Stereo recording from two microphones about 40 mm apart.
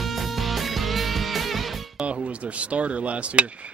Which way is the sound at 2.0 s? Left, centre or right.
Right.